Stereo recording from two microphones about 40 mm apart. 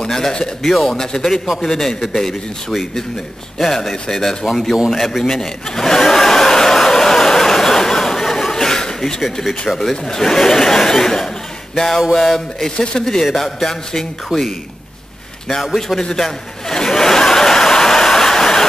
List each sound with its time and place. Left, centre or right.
0.0 s speech: centre
3.5 s speech: centre
4.9 s a sound: centre
9.4 s speech: centre
11.7 s a sound: centre
12.1 s speech: centre
12.7 s speech: left
13.2 s speech: centre
15.6 s a man's voice: centre
16.0 s chuckle: centre